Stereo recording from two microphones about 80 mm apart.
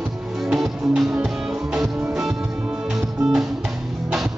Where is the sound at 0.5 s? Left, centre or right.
Centre.